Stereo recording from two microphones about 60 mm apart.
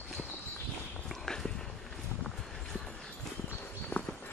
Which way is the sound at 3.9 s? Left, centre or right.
Left.